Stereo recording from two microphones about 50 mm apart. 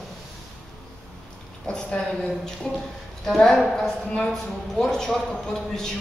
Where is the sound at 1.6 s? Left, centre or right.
Centre.